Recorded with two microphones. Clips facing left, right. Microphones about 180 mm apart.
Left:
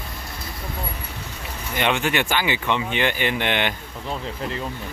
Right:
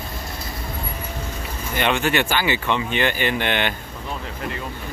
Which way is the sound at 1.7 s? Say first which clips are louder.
Right 1 dB; 15° left (ahead or behind).